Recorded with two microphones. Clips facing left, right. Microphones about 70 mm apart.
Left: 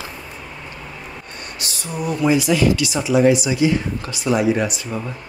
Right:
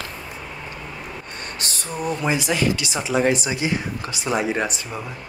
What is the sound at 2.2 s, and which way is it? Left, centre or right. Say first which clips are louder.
Speech: left 7 dB; right.